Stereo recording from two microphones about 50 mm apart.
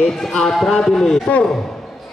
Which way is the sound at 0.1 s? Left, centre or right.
Centre.